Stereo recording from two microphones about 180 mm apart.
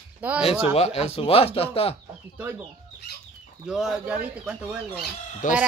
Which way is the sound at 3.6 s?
Centre (ahead or behind).